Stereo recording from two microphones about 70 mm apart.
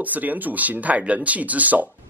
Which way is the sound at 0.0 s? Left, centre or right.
Right.